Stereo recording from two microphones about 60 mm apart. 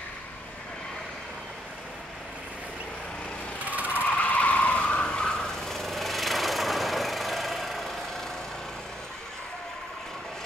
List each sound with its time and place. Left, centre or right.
3.6 s vehicle: right
4.0 s vehicle: left; by 8.0 s centre